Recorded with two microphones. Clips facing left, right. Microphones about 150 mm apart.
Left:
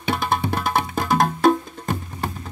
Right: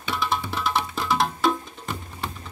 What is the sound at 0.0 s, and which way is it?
Music, 55° left (ahead or behind).